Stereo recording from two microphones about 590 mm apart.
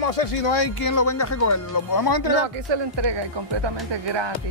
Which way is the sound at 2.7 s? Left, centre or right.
Right.